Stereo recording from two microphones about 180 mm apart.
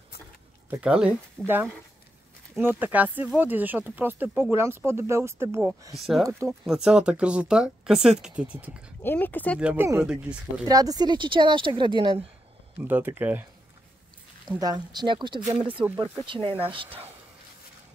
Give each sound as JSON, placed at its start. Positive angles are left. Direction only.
{"t": 0.7, "sound": "speech", "side_deg": -5}
{"t": 5.9, "sound": "speech", "side_deg": 0}
{"t": 9.0, "sound": "speech", "side_deg": 10}
{"t": 9.6, "sound": "speech", "side_deg": -5}
{"t": 10.6, "sound": "speech", "side_deg": -20}
{"t": 12.8, "sound": "speech", "side_deg": -10}
{"t": 14.6, "sound": "speech", "side_deg": -25}